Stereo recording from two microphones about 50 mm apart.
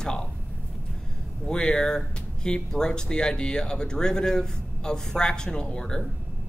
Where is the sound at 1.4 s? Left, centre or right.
Centre.